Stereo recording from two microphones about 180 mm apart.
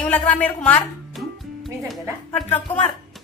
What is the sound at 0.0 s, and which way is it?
Speech, 10° left (ahead or behind).